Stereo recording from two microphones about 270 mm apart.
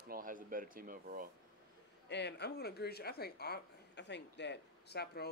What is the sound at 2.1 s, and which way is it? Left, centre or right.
Speech, left.